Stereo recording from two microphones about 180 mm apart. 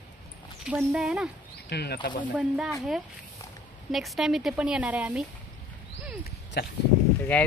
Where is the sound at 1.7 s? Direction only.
65° left (ahead or behind).